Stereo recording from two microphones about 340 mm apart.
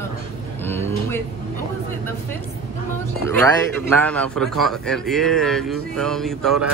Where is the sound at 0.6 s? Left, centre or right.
Centre.